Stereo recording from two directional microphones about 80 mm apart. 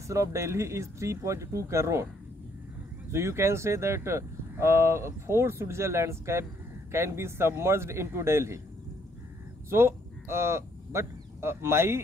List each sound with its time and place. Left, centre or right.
0.1 s speech: right
3.1 s speech: right
9.7 s speech: right